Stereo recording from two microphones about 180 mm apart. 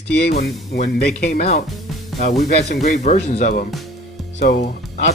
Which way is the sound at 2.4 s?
65° left (ahead or behind).